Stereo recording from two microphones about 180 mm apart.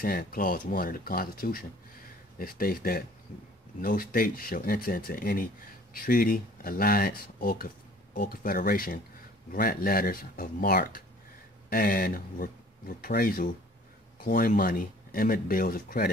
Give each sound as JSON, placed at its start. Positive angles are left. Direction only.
{"t": 0.0, "sound": "speech", "side_deg": 55}